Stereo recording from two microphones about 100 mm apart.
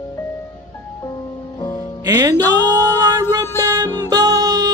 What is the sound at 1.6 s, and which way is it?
Music, 45° left (ahead or behind).